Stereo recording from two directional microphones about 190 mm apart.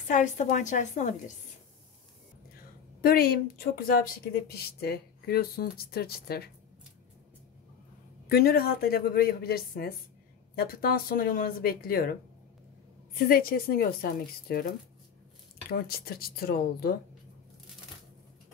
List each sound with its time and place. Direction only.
0.1 s a woman's voice: 40° left (ahead or behind)
3.0 s speech: 50° left (ahead or behind)
8.3 s speech: 55° left (ahead or behind)
13.3 s speech: 50° left (ahead or behind)
15.7 s speech: 55° left (ahead or behind)